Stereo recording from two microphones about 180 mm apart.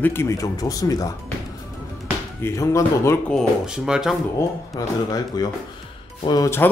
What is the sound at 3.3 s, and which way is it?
Speech, centre (ahead or behind).